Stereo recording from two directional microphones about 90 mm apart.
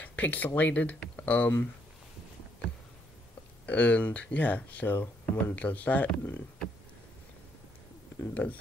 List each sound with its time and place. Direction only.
0.0 s a sound: 20° left (ahead or behind)
0.6 s speech: 15° left (ahead or behind)
3.6 s speech: 15° left (ahead or behind)
8.4 s speech: 15° left (ahead or behind)